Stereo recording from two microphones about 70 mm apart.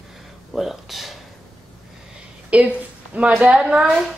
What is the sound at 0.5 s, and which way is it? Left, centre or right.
Speech, centre.